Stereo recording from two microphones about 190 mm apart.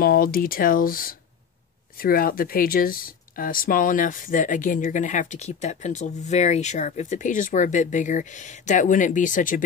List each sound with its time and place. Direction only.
0.0 s speech: 50° left (ahead or behind)